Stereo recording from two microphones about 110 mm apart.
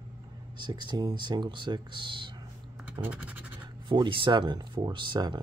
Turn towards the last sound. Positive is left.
turn(degrees=-45)  # may be behind; listen again after turning